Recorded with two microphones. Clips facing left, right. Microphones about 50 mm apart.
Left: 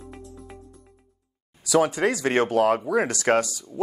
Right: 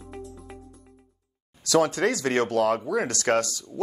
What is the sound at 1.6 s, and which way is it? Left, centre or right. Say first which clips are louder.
Speech: left 1 dB; centre.